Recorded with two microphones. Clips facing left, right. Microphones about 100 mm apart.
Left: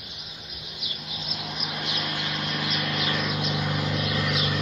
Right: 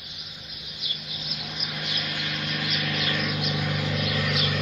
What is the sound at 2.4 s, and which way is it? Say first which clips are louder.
Vehicle: left 1 dB; 15° left (ahead or behind).